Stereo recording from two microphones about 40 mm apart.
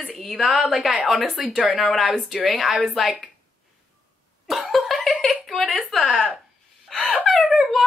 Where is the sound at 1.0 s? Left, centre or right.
Centre.